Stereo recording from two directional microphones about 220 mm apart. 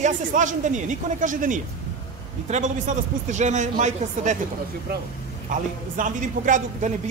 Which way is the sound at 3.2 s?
35° right (ahead or behind).